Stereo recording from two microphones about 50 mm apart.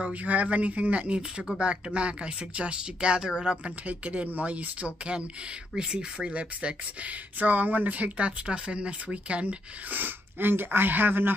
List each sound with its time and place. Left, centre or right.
0.0 s speech: right
9.9 s speech: right